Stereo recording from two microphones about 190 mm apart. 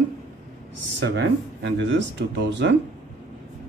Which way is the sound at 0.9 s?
70° right (ahead or behind).